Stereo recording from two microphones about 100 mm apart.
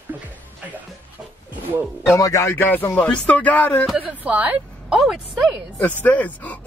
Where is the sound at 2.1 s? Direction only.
35° left (ahead or behind).